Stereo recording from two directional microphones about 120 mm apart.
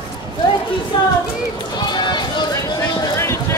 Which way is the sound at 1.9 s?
40° left (ahead or behind).